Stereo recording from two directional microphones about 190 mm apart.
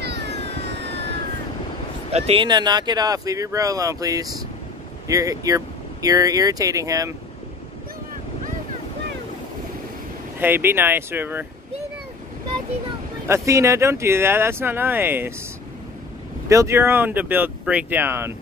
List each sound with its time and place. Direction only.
0.0 s a sound: 60° right (ahead or behind)
0.3 s vehicle: 35° left (ahead or behind)
2.1 s speech: 30° right (ahead or behind)
10.4 s speech: 10° right (ahead or behind)
13.3 s speech: 15° right (ahead or behind)
16.4 s speech: 15° right (ahead or behind)